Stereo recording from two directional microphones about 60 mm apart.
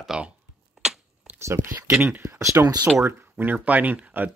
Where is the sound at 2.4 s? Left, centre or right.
Right.